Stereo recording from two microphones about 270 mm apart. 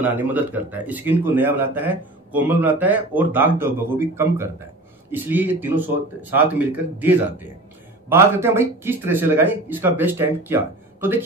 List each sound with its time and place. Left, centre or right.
0.0 s speech: centre